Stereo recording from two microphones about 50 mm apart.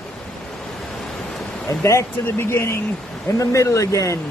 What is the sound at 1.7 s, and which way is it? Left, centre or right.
Speech, left.